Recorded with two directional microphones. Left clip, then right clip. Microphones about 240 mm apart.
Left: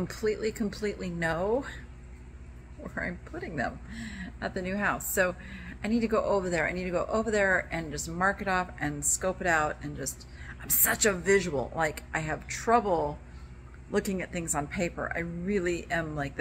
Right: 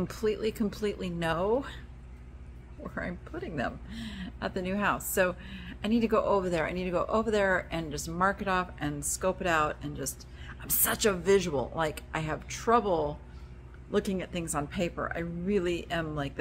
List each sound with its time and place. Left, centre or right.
0.0 s speech: centre
2.8 s speech: centre